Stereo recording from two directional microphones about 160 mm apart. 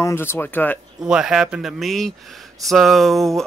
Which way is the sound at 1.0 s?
5° right (ahead or behind).